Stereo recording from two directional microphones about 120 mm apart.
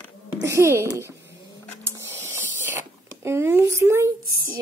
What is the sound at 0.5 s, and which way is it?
Speech, 20° right (ahead or behind).